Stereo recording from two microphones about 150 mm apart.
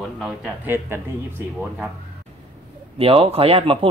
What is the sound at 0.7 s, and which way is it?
Speech, 15° right (ahead or behind).